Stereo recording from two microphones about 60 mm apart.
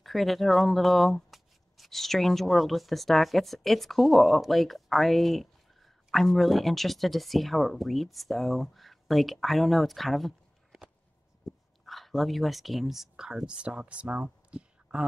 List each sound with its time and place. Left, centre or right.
0.0 s speech: centre
11.8 s speech: centre